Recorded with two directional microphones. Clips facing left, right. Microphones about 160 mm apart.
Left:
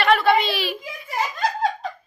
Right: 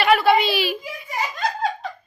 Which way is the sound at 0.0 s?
5° right (ahead or behind).